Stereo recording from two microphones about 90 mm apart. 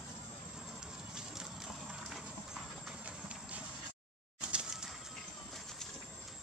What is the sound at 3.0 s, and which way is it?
Clip-clop, 15° right (ahead or behind).